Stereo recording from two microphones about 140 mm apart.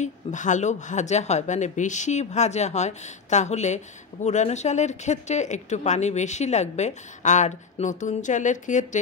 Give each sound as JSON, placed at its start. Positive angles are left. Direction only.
{"t": 0.0, "sound": "a woman's voice", "side_deg": 60}